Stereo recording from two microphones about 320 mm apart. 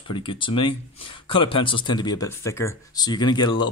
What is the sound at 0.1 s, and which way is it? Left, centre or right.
Speech, centre.